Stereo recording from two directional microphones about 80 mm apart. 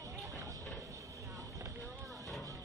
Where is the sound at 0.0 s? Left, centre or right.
Right.